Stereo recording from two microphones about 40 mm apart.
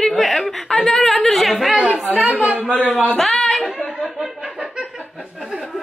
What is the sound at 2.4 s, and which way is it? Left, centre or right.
Speech, right.